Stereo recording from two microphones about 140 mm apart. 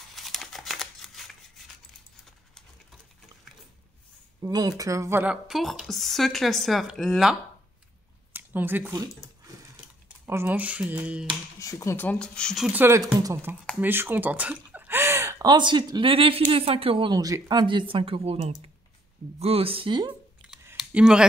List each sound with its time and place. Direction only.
0.1 s scissors: centre (ahead or behind)
4.4 s speech: 30° right (ahead or behind)
5.2 s a woman's voice: 5° right (ahead or behind)
8.3 s a sound: 15° right (ahead or behind)
10.0 s speech: 15° right (ahead or behind)
11.6 s speech: 20° left (ahead or behind)
12.6 s speech: 15° right (ahead or behind)
13.7 s a sound: 15° right (ahead or behind)
15.4 s speech: 35° right (ahead or behind)
20.7 s a sound: 5° right (ahead or behind)